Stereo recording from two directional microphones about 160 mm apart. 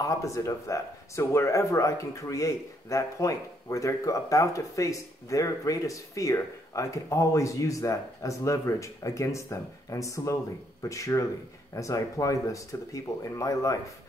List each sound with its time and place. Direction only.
0.0 s speech: 20° left (ahead or behind)